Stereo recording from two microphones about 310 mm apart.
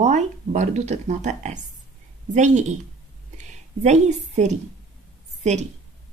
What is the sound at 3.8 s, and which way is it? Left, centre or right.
Speech, right.